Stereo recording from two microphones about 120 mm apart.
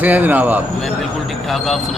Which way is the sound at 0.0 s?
15° right (ahead or behind).